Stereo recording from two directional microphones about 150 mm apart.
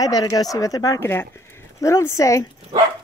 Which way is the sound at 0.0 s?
25° left (ahead or behind).